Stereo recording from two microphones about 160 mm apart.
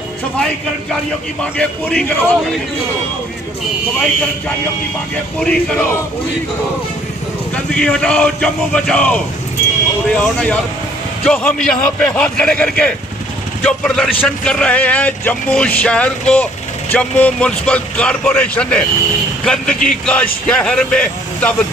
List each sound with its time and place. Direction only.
1.4 s a man's voice: 5° left (ahead or behind)
5.4 s speech: 5° left (ahead or behind)
7.5 s a man's voice: 5° left (ahead or behind)